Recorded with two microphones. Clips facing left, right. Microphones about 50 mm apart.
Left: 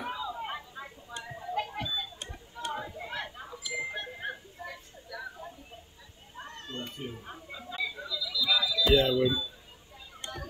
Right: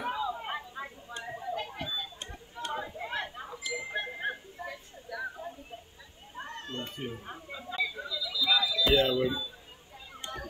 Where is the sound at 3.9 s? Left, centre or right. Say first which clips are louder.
Right 3 dB; right.